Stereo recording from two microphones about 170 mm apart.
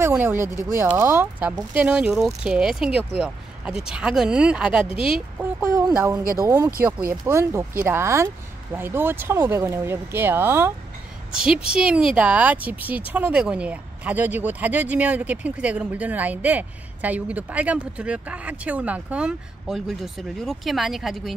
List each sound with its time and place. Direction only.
0.0 s speech: 15° right (ahead or behind)
5.6 s speech: 20° right (ahead or behind); by 21.4 s centre (ahead or behind)